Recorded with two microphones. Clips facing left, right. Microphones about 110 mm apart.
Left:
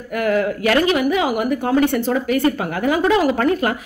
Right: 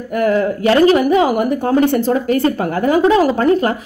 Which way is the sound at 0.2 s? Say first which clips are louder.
Right 3 dB; 30° right (ahead or behind).